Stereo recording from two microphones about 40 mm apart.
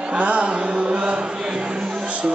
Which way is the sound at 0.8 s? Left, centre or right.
Right.